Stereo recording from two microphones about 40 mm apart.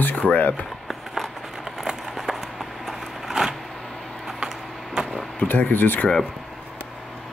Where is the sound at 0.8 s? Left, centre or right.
Centre.